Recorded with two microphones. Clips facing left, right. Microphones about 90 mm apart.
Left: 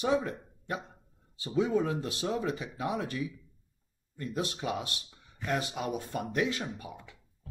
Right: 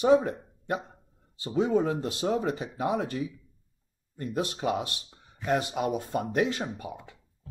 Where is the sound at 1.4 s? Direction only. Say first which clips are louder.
Right 3 dB; 45° right (ahead or behind).